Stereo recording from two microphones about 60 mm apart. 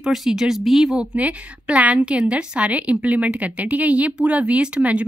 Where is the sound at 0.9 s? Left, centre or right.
Right.